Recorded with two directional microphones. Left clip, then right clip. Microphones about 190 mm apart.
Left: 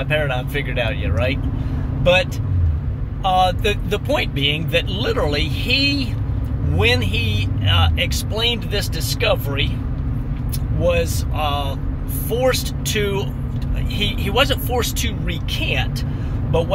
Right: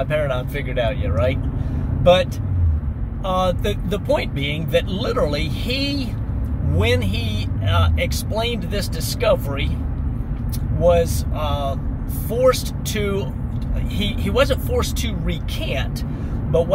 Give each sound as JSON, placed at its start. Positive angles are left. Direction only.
{"t": 0.0, "sound": "speech", "side_deg": -10}
{"t": 3.3, "sound": "speech", "side_deg": -10}
{"t": 6.8, "sound": "speech", "side_deg": -10}
{"t": 10.8, "sound": "speech", "side_deg": -10}
{"t": 14.3, "sound": "speech", "side_deg": -10}